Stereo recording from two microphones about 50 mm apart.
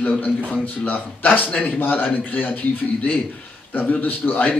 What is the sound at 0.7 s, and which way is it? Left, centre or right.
A man's voice, left.